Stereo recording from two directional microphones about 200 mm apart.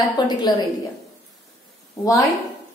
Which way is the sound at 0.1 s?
20° left (ahead or behind).